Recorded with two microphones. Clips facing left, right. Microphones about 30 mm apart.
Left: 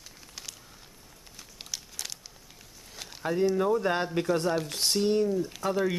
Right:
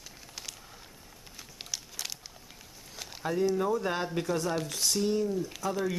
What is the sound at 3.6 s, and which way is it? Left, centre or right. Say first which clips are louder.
Speech: left 3 dB; left.